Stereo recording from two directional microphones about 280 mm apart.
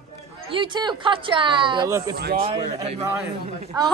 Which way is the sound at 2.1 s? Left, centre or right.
Right.